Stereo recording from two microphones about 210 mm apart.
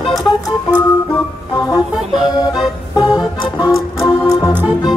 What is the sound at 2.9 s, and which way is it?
Organ, 20° left (ahead or behind).